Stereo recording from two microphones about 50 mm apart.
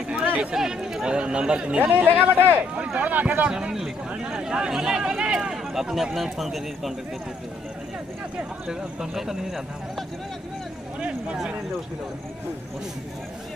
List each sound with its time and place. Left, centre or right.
0.2 s a sound: right
0.6 s speech: centre
1.8 s speech: right
3.4 s a man's voice: centre
8.6 s speech: centre
11.0 s speech: right